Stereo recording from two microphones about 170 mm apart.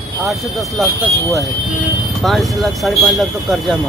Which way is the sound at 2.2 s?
Centre (ahead or behind).